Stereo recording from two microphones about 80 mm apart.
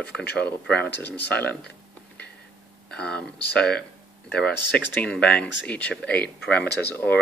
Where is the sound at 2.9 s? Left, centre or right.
Centre.